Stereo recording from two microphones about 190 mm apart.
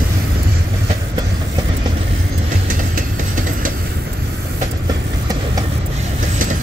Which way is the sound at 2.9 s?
45° right (ahead or behind).